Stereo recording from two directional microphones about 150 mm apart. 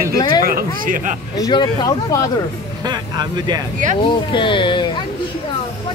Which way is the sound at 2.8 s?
30° right (ahead or behind).